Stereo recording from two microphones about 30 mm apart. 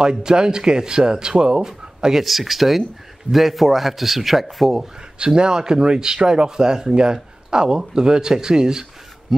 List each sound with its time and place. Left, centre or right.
0.0 s speech: right
2.1 s a man's voice: centre
5.2 s speech: right